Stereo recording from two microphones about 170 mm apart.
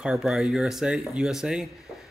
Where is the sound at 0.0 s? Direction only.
Centre (ahead or behind).